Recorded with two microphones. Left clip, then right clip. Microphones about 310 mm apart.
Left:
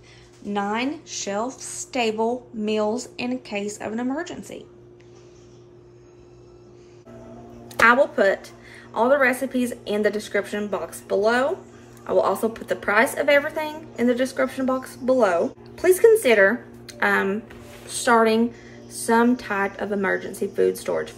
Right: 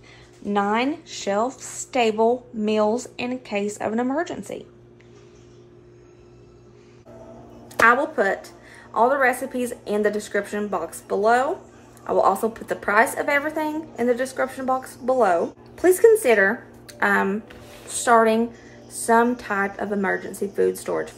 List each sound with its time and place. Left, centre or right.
0.5 s a woman's voice: centre
7.6 s a woman's voice: centre